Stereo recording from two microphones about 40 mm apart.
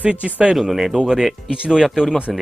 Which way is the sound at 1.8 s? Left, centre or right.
Centre.